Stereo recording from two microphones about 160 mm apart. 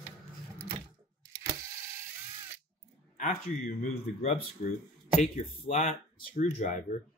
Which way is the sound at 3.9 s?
45° left (ahead or behind).